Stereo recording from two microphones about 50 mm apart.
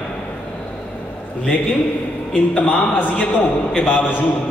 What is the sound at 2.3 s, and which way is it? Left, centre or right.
A man's voice, centre.